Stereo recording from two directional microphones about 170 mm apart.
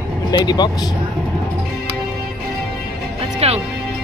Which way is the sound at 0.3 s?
25° left (ahead or behind).